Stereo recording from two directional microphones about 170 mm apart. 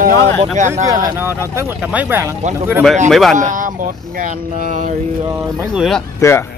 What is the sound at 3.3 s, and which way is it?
Speech, 50° right (ahead or behind).